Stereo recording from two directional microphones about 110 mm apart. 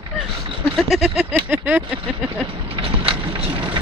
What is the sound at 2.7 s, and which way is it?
Vehicle, 50° right (ahead or behind).